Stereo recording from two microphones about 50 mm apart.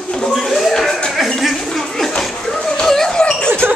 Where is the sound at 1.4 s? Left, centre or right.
Centre.